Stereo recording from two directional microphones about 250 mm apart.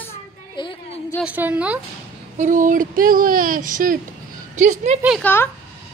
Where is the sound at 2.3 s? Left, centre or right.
Right.